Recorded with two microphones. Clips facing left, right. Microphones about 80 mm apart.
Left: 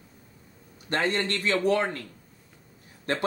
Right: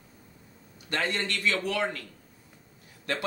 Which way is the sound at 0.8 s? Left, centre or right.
Left.